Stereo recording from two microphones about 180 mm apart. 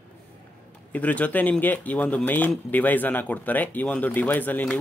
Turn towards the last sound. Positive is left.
turn(degrees=10)  # may be behind; listen again after turning